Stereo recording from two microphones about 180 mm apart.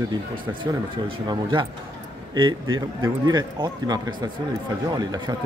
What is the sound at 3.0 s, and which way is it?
A man's voice, 25° right (ahead or behind).